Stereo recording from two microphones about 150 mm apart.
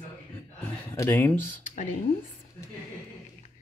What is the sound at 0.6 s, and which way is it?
Speech, 15° left (ahead or behind).